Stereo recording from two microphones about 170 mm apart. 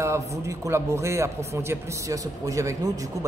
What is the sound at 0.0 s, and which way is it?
A man's voice, 15° right (ahead or behind).